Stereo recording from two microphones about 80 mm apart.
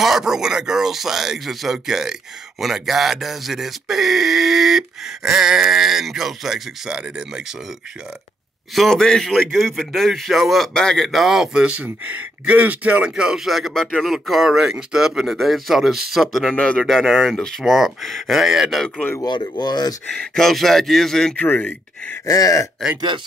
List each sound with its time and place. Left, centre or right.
0.0 s a man's voice: centre
8.7 s a man's voice: centre
19.2 s speech: left
20.1 s a man's voice: centre
21.4 s speech: centre
22.2 s groan: left
22.9 s speech: right